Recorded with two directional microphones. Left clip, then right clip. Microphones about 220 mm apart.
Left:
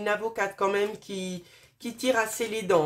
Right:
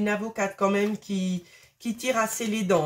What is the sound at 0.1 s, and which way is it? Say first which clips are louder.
Speech: even; 25° left (ahead or behind).